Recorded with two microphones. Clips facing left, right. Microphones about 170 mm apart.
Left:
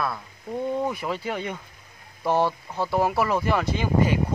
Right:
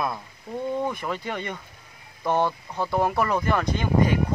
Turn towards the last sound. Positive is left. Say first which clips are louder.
# even
turn(degrees=5)  # may be behind; listen again after turning